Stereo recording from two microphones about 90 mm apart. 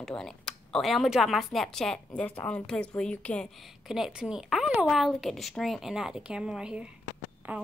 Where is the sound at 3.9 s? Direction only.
5° right (ahead or behind).